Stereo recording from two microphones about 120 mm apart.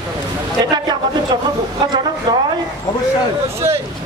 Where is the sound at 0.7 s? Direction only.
35° right (ahead or behind).